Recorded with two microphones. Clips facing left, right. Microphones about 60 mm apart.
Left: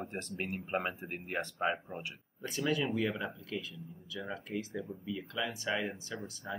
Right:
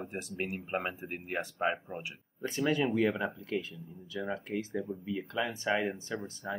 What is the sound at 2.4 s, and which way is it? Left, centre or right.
Speech, right.